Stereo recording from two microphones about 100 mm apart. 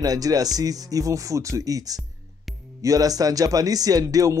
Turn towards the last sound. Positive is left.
turn(degrees=-35)  # may be behind; listen again after turning